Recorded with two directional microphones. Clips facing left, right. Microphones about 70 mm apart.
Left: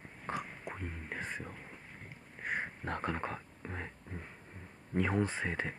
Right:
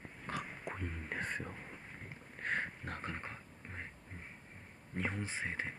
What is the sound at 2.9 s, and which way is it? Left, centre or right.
Speech, left.